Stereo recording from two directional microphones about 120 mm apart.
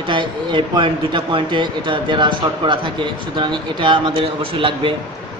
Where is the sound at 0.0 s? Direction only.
40° right (ahead or behind).